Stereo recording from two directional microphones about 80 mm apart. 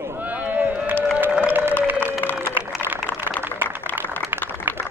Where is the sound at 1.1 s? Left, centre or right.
Centre.